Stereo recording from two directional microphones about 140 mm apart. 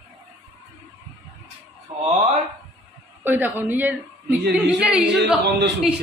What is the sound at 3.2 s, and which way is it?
A woman's voice, 15° right (ahead or behind).